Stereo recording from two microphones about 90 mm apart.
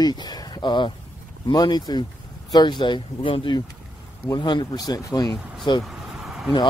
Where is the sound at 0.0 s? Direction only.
50° left (ahead or behind).